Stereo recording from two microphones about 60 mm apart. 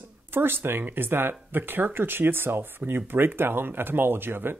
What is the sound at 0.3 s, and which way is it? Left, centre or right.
Speech, right.